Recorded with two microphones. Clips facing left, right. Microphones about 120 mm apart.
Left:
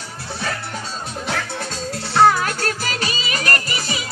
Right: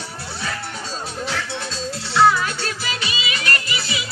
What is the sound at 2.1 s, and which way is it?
Music, 45° left (ahead or behind).